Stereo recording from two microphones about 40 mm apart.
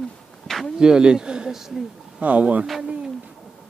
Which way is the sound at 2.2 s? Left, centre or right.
Right.